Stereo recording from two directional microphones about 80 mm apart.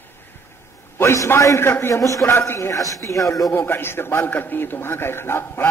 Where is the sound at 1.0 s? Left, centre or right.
Left.